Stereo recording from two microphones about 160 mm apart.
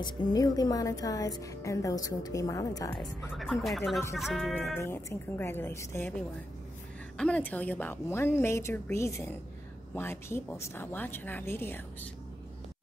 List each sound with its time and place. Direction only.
0.0 s speech: 25° left (ahead or behind)
3.0 s speech: centre (ahead or behind)
4.7 s a woman's voice: 15° left (ahead or behind)
7.2 s a woman's voice: 10° left (ahead or behind)